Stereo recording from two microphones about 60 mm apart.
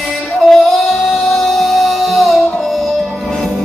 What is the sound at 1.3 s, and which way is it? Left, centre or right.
Music, centre.